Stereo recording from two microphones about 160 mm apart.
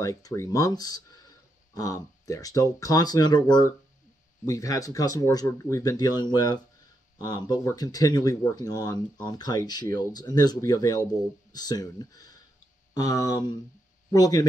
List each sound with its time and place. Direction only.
0.0 s speech: 20° left (ahead or behind)